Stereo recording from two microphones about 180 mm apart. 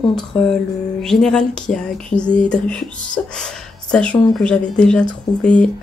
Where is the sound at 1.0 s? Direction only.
Centre (ahead or behind).